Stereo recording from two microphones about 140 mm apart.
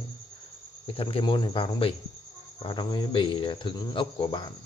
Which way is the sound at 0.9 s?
40° left (ahead or behind).